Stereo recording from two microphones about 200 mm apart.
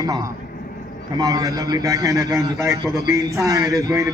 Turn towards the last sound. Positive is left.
turn(degrees=-15)  # may be behind; listen again after turning